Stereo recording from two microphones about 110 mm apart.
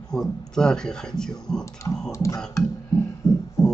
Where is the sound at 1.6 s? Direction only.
30° left (ahead or behind).